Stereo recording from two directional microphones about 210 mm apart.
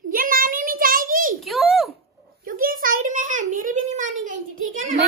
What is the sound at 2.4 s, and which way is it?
A child's voice, 40° right (ahead or behind).